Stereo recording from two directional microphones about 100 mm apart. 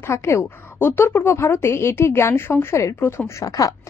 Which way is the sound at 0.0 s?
25° left (ahead or behind).